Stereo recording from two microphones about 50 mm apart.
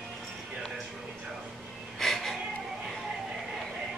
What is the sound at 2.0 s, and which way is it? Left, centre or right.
Cat, centre.